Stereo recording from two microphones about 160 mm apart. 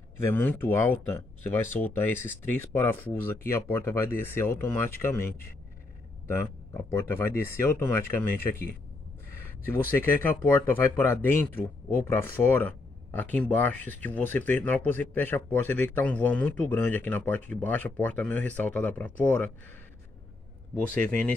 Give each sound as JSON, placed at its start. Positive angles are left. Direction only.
{"t": 0.2, "sound": "speech", "side_deg": 10}
{"t": 6.2, "sound": "speech", "side_deg": 15}
{"t": 9.7, "sound": "speech", "side_deg": 15}
{"t": 20.7, "sound": "speech", "side_deg": 10}